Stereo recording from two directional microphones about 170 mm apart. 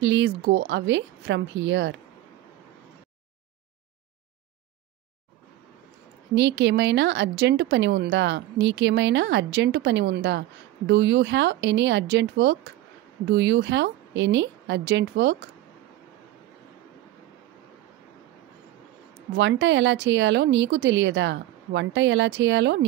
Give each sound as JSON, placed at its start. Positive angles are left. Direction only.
{"t": 0.0, "sound": "speech", "side_deg": -90}
{"t": 6.3, "sound": "speech", "side_deg": -90}
{"t": 19.3, "sound": "speech", "side_deg": -90}